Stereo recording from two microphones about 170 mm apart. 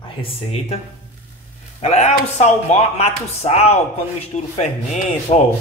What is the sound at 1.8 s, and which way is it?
Speech, 40° left (ahead or behind).